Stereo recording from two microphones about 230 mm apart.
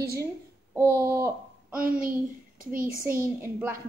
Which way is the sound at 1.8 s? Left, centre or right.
Right.